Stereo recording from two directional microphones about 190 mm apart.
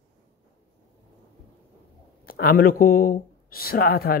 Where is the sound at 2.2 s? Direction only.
50° left (ahead or behind).